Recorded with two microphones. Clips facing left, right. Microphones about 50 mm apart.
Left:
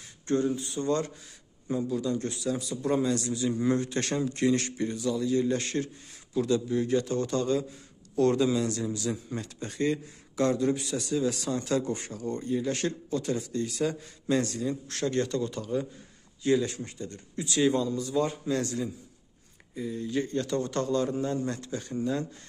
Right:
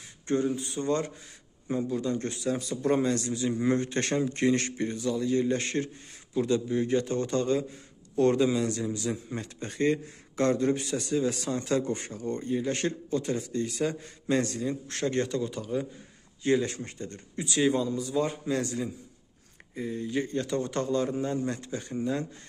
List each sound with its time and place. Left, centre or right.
0.6 s a man's voice: right
3.3 s a man's voice: right
15.2 s a man's voice: centre
16.4 s speech: right
17.6 s a man's voice: centre
19.9 s a man's voice: right